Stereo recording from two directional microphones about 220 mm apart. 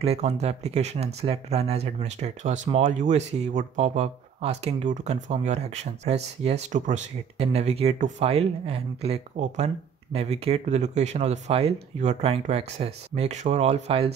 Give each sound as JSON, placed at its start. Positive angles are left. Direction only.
{"t": 0.0, "sound": "speech", "side_deg": -30}